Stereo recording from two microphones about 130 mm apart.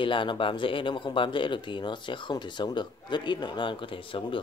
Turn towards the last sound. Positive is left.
turn(degrees=40)  # may be behind; listen again after turning